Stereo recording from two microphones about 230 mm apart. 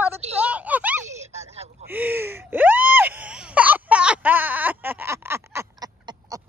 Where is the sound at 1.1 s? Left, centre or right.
Right.